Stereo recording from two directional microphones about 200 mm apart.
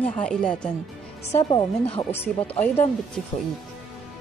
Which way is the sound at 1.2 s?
35° left (ahead or behind).